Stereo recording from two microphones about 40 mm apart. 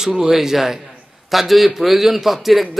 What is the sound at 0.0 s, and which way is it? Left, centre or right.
A man's voice, centre.